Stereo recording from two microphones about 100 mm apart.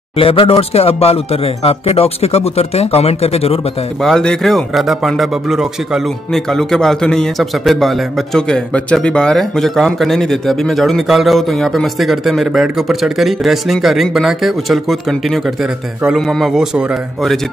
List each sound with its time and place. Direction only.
0.2 s speech: 70° left (ahead or behind); by 3.5 s 90° left
4.0 s a man's voice: 5° left (ahead or behind)